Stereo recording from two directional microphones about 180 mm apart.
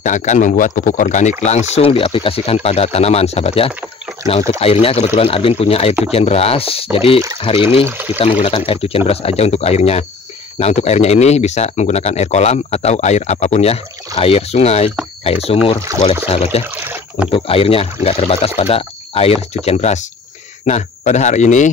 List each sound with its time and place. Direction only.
0.0 s speech: 45° left (ahead or behind)
1.8 s speech: 30° left (ahead or behind)
7.8 s speech: 10° right (ahead or behind)
8.2 s speech: 35° left (ahead or behind)
15.9 s speech: 20° right (ahead or behind)
16.3 s speech: 35° left (ahead or behind)
16.8 s rowboat: 10° right (ahead or behind)
17.3 s speech: 30° left (ahead or behind)